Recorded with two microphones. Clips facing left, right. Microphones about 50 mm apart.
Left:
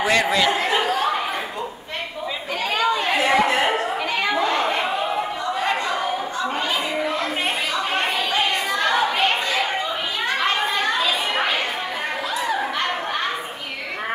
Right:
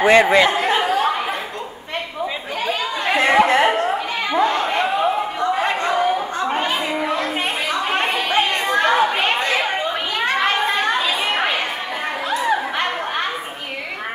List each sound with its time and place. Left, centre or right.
0.0 s speech: right
3.2 s a sound: right
7.9 s chatter: right
8.4 s chatter: right